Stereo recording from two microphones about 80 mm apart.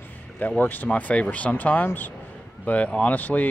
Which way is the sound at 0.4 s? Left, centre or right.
Left.